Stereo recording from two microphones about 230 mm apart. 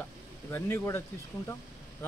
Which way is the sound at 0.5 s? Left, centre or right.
Centre.